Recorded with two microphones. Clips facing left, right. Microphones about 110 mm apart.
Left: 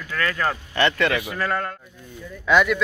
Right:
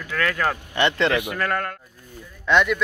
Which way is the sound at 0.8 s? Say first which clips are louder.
Even; 25° right (ahead or behind).